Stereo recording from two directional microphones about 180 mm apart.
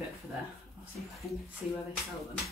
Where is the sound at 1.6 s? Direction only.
5° right (ahead or behind).